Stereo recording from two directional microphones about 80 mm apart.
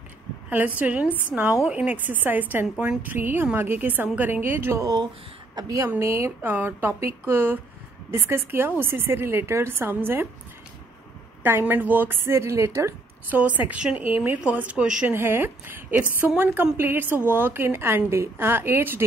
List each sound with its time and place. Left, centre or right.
0.5 s a woman's voice: right
4.7 s a woman's voice: right
6.4 s a woman's voice: right
11.4 s a woman's voice: right
13.3 s a woman's voice: centre
15.0 s a woman's voice: right